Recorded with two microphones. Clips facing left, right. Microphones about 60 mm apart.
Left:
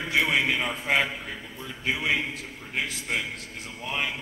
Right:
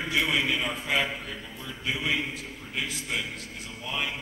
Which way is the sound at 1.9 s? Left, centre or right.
Left.